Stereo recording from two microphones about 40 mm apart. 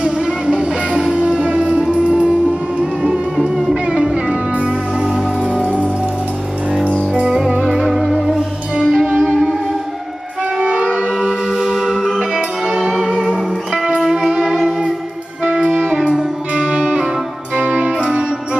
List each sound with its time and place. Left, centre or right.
0.0 s music: right
3.3 s music: centre
5.4 s music: right
7.2 s music: centre
10.6 s music: right
11.2 s singing bowl: centre
12.4 s music: centre
17.6 s music: right